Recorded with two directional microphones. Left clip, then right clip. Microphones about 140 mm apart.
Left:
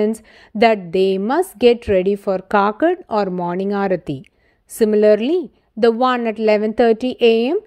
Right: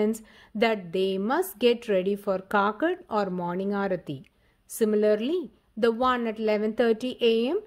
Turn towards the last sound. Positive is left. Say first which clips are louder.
# left 9 dB
turn(degrees=50)  # may be behind; listen again after turning